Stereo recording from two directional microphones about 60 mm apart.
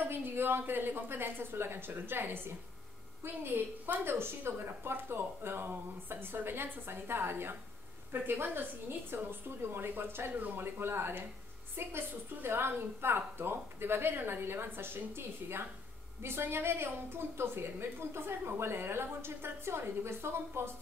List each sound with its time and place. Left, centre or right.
0.0 s a woman's voice: right